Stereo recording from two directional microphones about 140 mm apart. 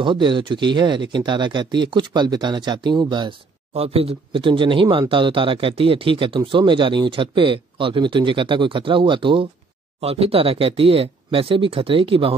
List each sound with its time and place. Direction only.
0.0 s speech: 35° right (ahead or behind)
3.7 s speech: 45° right (ahead or behind)